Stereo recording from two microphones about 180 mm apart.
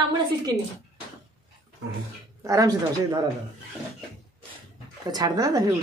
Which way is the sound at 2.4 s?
20° right (ahead or behind).